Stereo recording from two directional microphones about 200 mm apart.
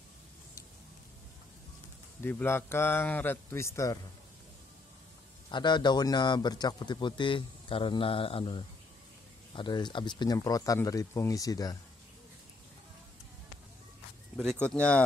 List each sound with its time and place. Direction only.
2.2 s a man's voice: 10° left (ahead or behind)
5.5 s speech: 20° left (ahead or behind)
14.3 s speech: centre (ahead or behind)